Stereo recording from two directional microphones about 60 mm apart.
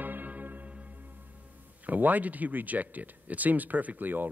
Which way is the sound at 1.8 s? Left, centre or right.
Right.